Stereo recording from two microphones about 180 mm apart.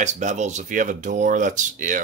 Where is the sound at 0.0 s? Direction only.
40° right (ahead or behind).